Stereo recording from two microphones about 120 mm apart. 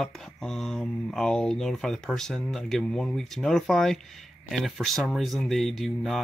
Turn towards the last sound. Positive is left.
turn(degrees=0)  # may be behind; listen again after turning